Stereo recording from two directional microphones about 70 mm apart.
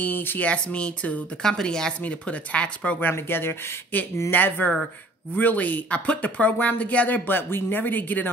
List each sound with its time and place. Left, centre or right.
0.0 s speech: left
0.5 s speech: centre
3.1 s speech: left